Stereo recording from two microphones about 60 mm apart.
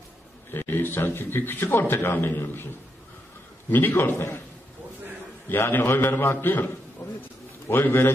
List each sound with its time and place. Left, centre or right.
0.5 s a man's voice: left
3.7 s a man's voice: left
5.5 s a man's voice: left
7.0 s a sound: left
7.6 s a man's voice: left